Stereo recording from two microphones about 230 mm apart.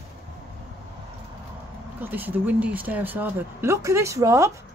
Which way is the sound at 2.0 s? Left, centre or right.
Centre.